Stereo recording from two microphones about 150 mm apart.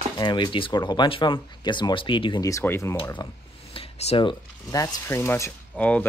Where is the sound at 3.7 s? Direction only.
40° left (ahead or behind).